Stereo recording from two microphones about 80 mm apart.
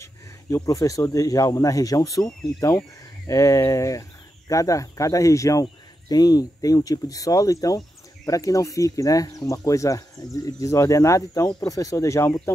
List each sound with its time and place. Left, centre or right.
0.0 s speech: left